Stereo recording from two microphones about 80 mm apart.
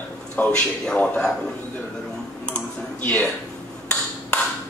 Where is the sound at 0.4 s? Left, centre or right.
Left.